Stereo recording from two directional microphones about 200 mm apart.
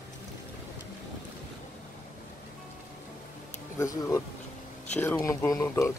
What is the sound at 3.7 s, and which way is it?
Speech, 15° left (ahead or behind).